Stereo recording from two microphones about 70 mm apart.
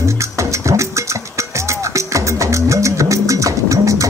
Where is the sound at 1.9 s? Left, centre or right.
Right.